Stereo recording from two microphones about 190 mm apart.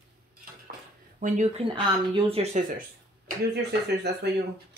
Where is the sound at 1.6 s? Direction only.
30° right (ahead or behind).